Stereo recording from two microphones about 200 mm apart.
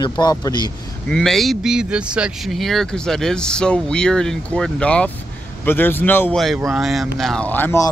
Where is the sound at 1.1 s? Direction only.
Centre (ahead or behind).